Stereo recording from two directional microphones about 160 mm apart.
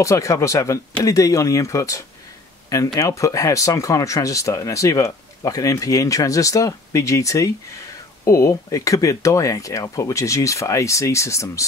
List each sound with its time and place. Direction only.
0.0 s speech: 20° left (ahead or behind)